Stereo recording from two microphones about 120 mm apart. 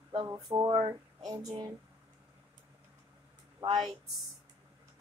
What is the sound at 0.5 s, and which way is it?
Speech, 35° right (ahead or behind).